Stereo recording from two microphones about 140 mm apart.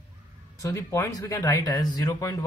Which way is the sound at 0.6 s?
20° left (ahead or behind).